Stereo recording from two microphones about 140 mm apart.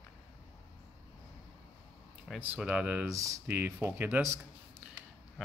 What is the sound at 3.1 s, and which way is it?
Speech, 25° right (ahead or behind).